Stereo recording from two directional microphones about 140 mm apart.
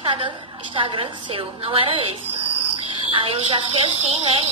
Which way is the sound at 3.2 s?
40° right (ahead or behind).